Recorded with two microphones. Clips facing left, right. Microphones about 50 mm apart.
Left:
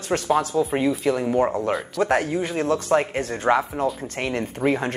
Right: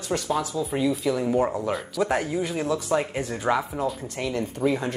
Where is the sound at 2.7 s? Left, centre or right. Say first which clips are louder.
Left 5 dB; left.